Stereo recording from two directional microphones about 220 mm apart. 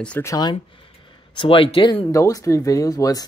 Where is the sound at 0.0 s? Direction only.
10° left (ahead or behind).